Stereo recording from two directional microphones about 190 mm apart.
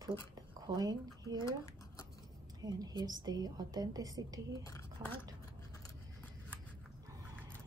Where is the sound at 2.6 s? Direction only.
20° right (ahead or behind).